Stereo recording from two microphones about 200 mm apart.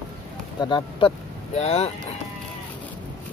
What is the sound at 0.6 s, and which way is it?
Speech, 25° left (ahead or behind).